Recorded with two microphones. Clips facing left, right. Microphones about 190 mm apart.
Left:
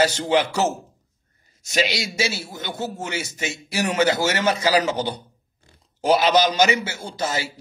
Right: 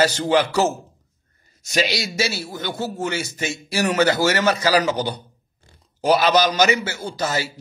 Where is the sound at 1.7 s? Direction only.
20° left (ahead or behind).